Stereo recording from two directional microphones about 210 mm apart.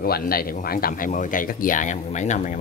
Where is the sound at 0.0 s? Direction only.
45° left (ahead or behind).